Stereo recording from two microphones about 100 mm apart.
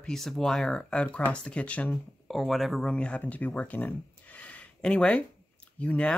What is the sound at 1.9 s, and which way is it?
Speech, centre (ahead or behind).